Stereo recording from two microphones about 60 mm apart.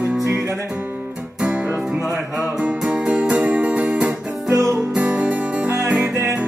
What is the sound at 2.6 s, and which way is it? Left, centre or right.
Music, right.